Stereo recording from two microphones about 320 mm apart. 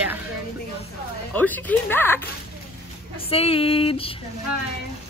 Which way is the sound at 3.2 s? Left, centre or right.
Centre.